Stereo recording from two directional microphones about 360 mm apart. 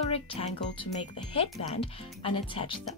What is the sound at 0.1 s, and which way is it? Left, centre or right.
Speech, centre.